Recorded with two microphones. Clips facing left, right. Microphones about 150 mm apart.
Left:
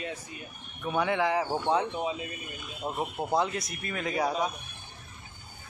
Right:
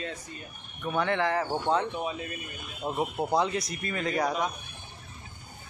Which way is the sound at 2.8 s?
Centre (ahead or behind).